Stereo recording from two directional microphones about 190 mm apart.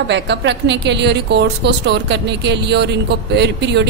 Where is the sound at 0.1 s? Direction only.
65° right (ahead or behind).